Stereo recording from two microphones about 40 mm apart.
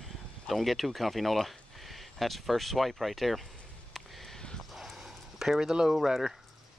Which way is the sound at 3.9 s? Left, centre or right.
Centre.